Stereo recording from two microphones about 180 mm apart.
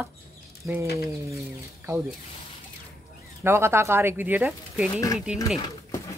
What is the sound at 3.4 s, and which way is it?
A woman's voice, 15° right (ahead or behind).